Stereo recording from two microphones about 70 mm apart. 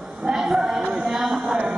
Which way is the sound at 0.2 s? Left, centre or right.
Centre.